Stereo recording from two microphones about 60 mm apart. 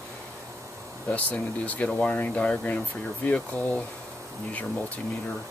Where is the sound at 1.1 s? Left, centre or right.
Left.